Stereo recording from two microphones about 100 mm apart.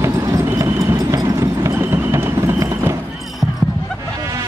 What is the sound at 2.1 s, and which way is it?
Clip-clop, 25° right (ahead or behind).